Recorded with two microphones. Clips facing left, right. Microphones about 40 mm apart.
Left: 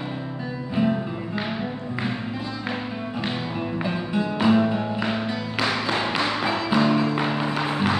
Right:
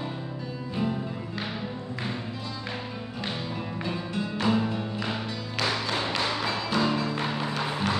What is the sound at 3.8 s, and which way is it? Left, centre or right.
Music, centre.